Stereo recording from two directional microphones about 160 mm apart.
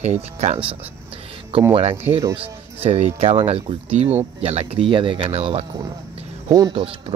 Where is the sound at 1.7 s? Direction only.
40° right (ahead or behind).